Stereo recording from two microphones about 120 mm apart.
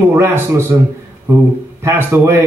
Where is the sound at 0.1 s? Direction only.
20° right (ahead or behind).